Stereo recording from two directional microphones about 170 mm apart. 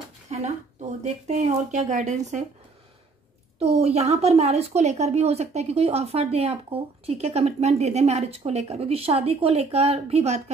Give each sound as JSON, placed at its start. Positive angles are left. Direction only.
{"t": 0.3, "sound": "speech", "side_deg": -40}
{"t": 3.5, "sound": "speech", "side_deg": -35}